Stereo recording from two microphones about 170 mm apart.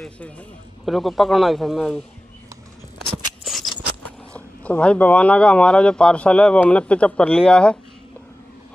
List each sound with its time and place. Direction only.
0.0 s speech: 5° left (ahead or behind)
3.4 s a sound: centre (ahead or behind)
4.3 s speech: 5° left (ahead or behind)